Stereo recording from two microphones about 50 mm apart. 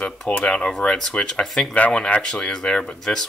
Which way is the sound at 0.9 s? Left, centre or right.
Centre.